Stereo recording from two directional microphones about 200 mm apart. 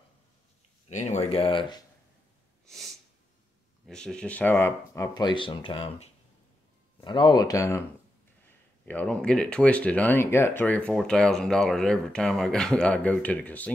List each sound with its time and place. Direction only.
0.8 s speech: 35° left (ahead or behind)
2.6 s sneeze: centre (ahead or behind)
3.8 s speech: 5° left (ahead or behind)
8.8 s speech: 5° left (ahead or behind)